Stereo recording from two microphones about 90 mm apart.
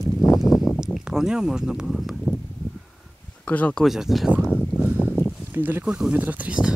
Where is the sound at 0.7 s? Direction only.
5° right (ahead or behind).